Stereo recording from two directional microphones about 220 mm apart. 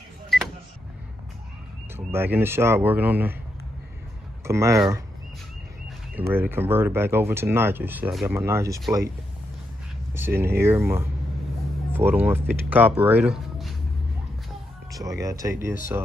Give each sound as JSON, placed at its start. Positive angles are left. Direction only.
{"t": 2.0, "sound": "speech", "side_deg": -10}
{"t": 4.5, "sound": "speech", "side_deg": -15}
{"t": 6.1, "sound": "speech", "side_deg": -10}
{"t": 8.4, "sound": "speech", "side_deg": -10}
{"t": 10.1, "sound": "speech", "side_deg": -10}
{"t": 14.9, "sound": "speech", "side_deg": -15}